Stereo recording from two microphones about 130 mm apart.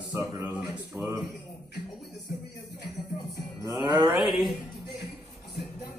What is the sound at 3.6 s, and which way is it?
Cattle, 30° right (ahead or behind).